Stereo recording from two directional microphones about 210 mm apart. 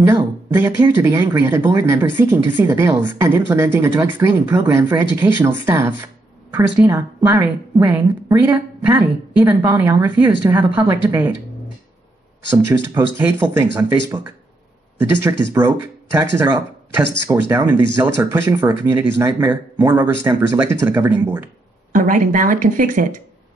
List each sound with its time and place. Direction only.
0.1 s speech: 10° right (ahead or behind)
12.6 s speech: 10° right (ahead or behind)
21.9 s speech: 40° right (ahead or behind)